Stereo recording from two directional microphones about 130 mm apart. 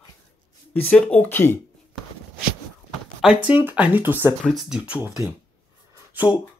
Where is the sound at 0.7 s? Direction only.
10° left (ahead or behind).